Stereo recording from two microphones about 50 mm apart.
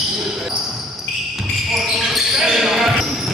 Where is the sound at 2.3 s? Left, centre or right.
Centre.